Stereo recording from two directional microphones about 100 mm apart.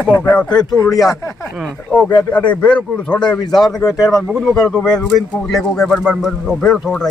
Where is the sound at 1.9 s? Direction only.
15° left (ahead or behind).